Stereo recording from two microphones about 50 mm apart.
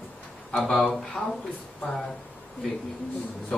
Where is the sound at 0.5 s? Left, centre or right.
Centre.